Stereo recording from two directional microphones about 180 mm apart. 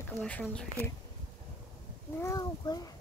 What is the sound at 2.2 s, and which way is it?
Speech, 20° left (ahead or behind).